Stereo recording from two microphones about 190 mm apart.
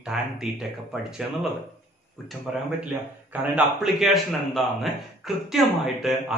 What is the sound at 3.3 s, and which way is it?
Speech, 5° right (ahead or behind).